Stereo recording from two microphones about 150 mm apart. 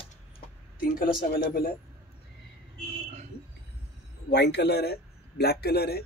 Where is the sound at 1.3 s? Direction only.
90° left.